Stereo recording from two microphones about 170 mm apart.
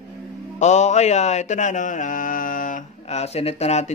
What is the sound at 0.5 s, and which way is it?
Mantra, 40° left (ahead or behind).